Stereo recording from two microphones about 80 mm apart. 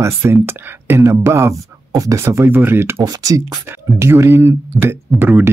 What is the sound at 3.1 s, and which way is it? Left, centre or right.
Speech, right.